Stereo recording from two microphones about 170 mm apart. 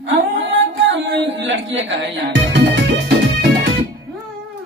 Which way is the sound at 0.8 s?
90° right.